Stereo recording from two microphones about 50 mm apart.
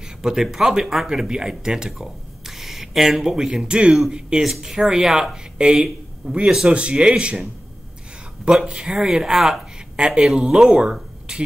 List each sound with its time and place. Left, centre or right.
0.0 s speech: centre
4.4 s speech: centre
8.6 s speech: centre